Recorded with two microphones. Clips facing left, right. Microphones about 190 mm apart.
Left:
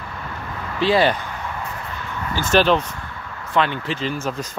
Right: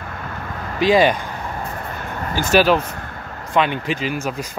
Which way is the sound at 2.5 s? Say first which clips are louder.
Right 1 dB; 10° right (ahead or behind).